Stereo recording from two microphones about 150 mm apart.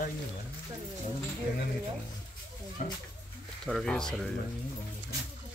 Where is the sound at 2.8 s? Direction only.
60° left (ahead or behind).